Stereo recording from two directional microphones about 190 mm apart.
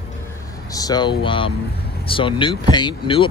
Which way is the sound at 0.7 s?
20° left (ahead or behind).